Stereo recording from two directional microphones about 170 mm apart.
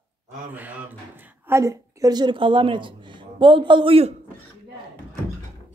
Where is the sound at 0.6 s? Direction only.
10° right (ahead or behind); by 4.1 s 35° right (ahead or behind).